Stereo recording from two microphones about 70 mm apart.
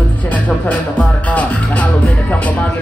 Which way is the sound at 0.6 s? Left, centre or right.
Centre.